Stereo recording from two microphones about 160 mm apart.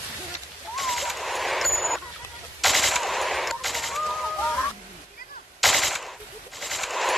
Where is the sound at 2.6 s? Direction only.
Centre (ahead or behind).